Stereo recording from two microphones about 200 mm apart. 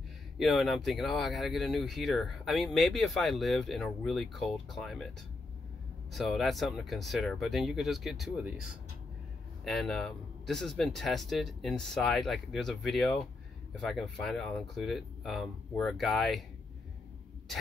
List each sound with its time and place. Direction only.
0.4 s speech: centre (ahead or behind)
6.1 s speech: centre (ahead or behind)
9.7 s speech: centre (ahead or behind)